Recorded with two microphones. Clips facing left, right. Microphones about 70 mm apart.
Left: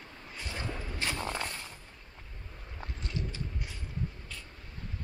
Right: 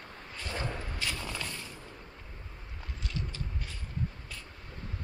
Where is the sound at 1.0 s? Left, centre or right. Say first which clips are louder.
Left 5 dB; left.